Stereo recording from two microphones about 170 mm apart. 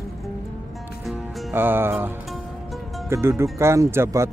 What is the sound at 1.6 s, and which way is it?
Speech, 15° right (ahead or behind).